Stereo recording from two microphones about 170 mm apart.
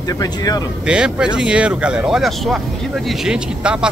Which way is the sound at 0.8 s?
5° right (ahead or behind).